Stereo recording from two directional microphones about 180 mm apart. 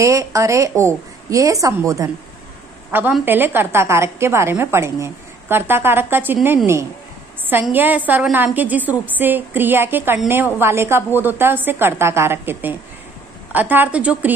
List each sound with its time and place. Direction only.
0.0 s a woman's voice: 20° right (ahead or behind)